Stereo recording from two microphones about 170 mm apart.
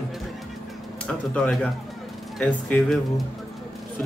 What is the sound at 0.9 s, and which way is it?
Speech, 5° left (ahead or behind).